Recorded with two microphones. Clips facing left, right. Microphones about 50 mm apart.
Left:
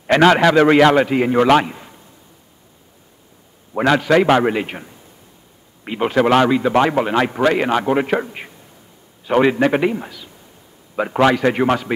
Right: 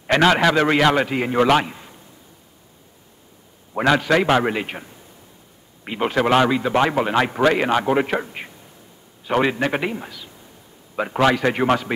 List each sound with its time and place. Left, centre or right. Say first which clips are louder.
0.0 s a man's voice: left 4 dB; centre
3.7 s a man's voice: left 3 dB; centre
5.9 s a man's voice: left 3 dB; centre
8.1 s a man's voice: left 4 dB; centre
11.2 s a man's voice: left 2 dB; centre